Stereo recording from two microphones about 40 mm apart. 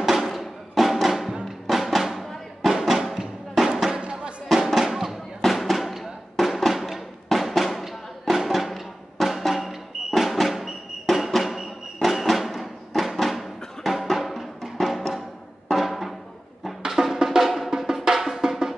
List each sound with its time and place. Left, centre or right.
0.0 s music: centre
4.0 s music: right
4.5 s music: centre
16.8 s drum: centre